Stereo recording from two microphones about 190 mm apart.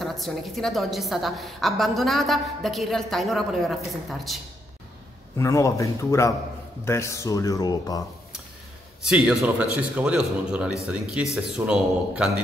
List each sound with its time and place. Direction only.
0.0 s a woman's voice: centre (ahead or behind)
5.4 s speech: 15° left (ahead or behind)
9.0 s a woman's voice: 5° right (ahead or behind)